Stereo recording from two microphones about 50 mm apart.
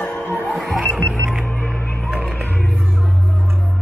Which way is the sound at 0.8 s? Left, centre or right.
Left.